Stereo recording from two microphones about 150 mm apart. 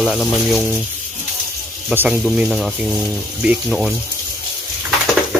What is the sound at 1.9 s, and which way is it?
Speech, 10° right (ahead or behind).